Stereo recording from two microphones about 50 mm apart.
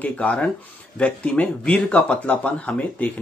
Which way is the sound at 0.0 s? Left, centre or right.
Left.